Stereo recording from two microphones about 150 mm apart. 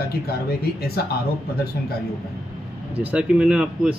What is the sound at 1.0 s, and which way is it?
Speech, 90° left.